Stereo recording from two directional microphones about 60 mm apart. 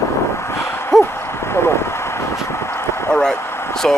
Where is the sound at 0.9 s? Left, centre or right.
Centre.